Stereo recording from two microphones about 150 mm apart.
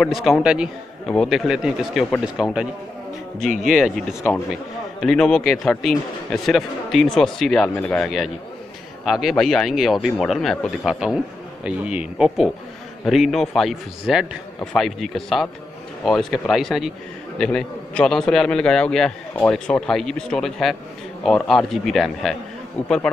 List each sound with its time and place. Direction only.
0.0 s a man's voice: centre (ahead or behind)
1.0 s a man's voice: 5° left (ahead or behind)
3.6 s a man's voice: centre (ahead or behind)